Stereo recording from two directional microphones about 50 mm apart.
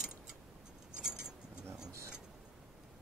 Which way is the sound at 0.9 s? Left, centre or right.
Centre.